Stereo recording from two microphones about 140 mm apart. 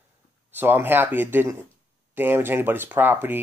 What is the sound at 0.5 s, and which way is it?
Speech, 15° right (ahead or behind).